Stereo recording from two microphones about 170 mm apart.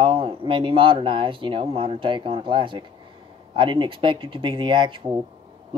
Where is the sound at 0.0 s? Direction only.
30° right (ahead or behind).